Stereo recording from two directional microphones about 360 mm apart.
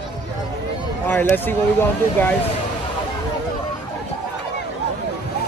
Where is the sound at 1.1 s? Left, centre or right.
Centre.